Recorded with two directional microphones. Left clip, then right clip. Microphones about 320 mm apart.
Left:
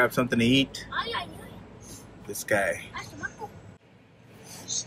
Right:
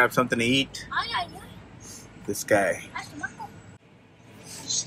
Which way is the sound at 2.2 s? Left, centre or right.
Centre.